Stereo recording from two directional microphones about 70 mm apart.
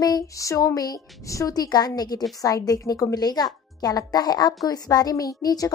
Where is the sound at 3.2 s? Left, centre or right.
Left.